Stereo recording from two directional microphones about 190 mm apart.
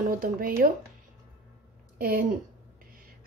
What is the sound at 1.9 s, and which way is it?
Speech, 50° right (ahead or behind).